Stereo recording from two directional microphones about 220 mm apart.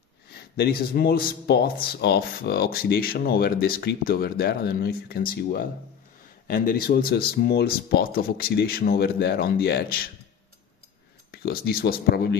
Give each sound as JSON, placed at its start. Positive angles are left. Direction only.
{"t": 0.3, "sound": "speech", "side_deg": 45}
{"t": 11.3, "sound": "speech", "side_deg": 45}